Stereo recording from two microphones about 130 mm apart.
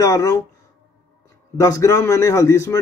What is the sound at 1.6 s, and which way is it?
Speech, 25° left (ahead or behind).